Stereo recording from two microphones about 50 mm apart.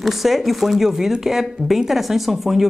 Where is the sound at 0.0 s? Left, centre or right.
Centre.